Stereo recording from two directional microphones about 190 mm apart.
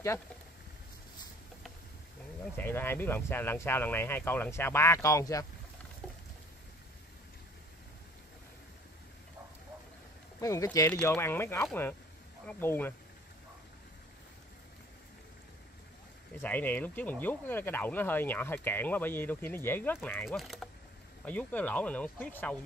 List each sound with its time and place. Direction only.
2.5 s speech: 10° left (ahead or behind)
10.4 s speech: 15° left (ahead or behind)
16.3 s speech: 10° left (ahead or behind)